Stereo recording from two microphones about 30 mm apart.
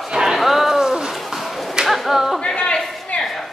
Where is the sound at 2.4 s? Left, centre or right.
Left.